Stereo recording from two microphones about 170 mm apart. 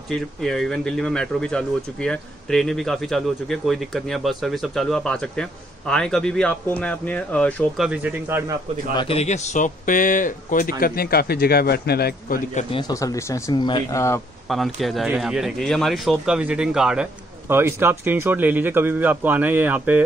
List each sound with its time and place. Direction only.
0.1 s speech: 5° left (ahead or behind)
7.8 s speech: 10° right (ahead or behind)
8.9 s speech: 35° left (ahead or behind); by 12.4 s 65° left (ahead or behind)
12.8 s speech: 20° left (ahead or behind)
14.5 s speech: centre (ahead or behind)